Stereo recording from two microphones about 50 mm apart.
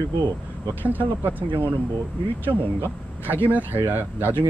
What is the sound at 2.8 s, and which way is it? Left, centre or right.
Speech, right.